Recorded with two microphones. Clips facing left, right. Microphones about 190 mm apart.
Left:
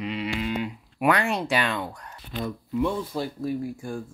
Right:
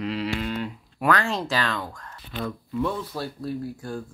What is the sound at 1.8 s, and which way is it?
Speech, 25° left (ahead or behind).